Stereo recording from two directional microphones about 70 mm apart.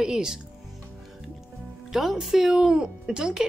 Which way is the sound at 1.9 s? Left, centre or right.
Centre.